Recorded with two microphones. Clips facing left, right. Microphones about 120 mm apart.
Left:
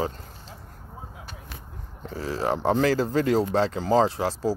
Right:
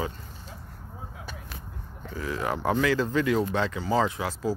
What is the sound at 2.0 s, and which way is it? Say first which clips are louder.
Speech: left 3 dB; 30° left (ahead or behind).